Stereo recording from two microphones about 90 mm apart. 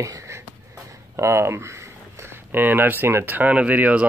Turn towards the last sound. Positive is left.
turn(degrees=-15)  # may be behind; listen again after turning